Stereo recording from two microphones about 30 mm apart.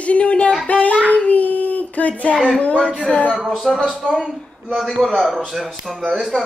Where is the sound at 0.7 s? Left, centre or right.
Left.